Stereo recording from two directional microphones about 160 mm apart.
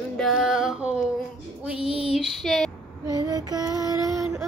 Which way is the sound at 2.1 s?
Centre (ahead or behind).